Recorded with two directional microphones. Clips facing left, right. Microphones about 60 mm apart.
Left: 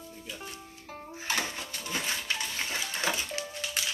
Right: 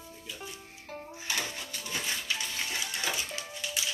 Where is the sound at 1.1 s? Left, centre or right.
Left.